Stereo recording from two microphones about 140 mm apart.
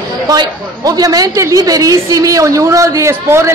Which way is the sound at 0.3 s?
25° right (ahead or behind).